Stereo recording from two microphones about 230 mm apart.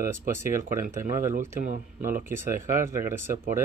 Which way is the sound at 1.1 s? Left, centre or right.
Right.